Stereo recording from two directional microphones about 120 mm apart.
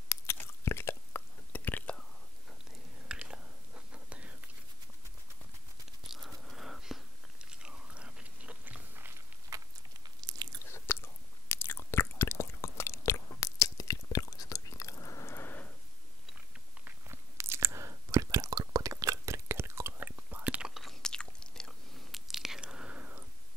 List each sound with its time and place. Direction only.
0.1 s chewing: 20° left (ahead or behind)
3.1 s whispering: 10° right (ahead or behind)
6.0 s biting: centre (ahead or behind)
7.5 s chewing: 10° right (ahead or behind)
9.5 s a sound: 25° right (ahead or behind)
10.3 s biting: 35° right (ahead or behind)
10.6 s chewing: 20° left (ahead or behind)
16.8 s chewing: 20° right (ahead or behind)
20.7 s biting: 5° left (ahead or behind); by 23.2 s 10° right (ahead or behind)